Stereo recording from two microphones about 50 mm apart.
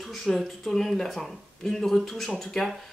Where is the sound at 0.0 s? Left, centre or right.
Centre.